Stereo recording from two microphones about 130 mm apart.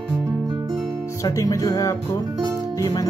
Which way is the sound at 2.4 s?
25° right (ahead or behind).